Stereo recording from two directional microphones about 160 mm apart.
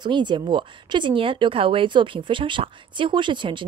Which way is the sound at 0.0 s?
30° right (ahead or behind).